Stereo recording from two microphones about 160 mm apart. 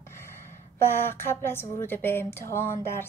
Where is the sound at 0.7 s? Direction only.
15° left (ahead or behind).